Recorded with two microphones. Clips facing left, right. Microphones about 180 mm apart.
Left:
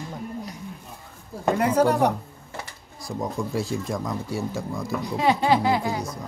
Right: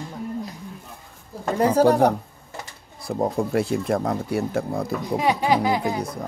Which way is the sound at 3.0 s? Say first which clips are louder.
Right 5 dB; 60° right (ahead or behind).